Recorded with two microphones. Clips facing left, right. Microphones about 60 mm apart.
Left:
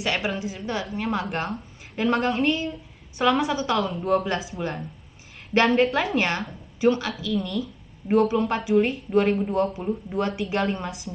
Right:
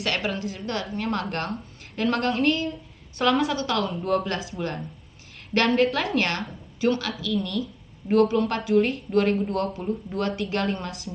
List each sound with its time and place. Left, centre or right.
0.0 s speech: centre
0.6 s a woman's voice: centre
6.1 s speech: centre
10.4 s a woman's voice: centre
10.8 s speech: centre